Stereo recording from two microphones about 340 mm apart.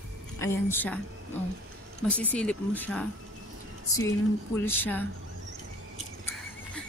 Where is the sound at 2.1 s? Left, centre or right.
Centre.